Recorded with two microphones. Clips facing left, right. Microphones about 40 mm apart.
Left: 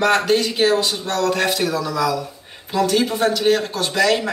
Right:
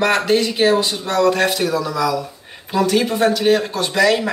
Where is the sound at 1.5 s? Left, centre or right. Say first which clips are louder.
Right 1 dB; centre.